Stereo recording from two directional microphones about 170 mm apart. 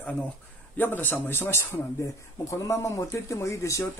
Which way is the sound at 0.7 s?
10° left (ahead or behind).